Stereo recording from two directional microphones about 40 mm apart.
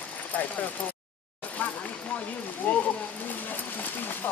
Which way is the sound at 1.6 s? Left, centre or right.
Left.